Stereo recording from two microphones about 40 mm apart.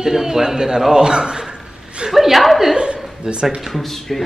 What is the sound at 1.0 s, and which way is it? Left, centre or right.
Chuckle, centre.